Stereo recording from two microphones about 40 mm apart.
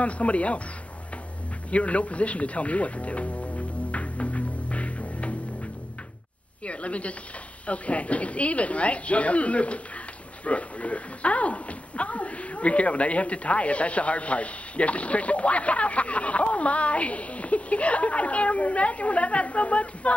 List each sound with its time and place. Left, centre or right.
0.0 s speech: left
1.7 s speech: left
3.9 s music: left
6.6 s speech: left